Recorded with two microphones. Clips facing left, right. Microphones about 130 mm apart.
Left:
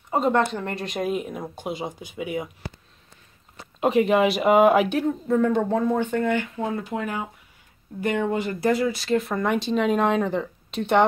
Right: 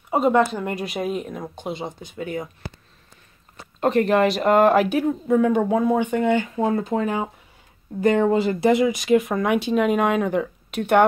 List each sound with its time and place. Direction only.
0.1 s speech: 5° right (ahead or behind); by 2.5 s 10° left (ahead or behind)
3.8 s speech: 5° left (ahead or behind)
4.8 s speech: 5° right (ahead or behind)
6.3 s speech: 30° right (ahead or behind); by 11.1 s 5° right (ahead or behind)